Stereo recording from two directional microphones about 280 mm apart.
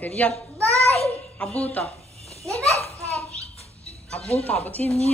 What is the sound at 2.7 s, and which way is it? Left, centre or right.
Children playing, left.